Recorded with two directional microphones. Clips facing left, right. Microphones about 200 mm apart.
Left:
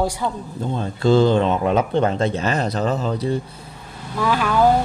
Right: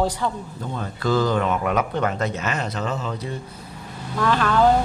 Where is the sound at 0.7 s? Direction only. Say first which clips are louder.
Left 6 dB; 25° left (ahead or behind).